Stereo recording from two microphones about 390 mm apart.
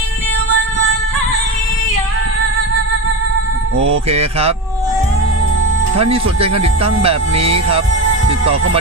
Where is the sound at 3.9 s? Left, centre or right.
Centre.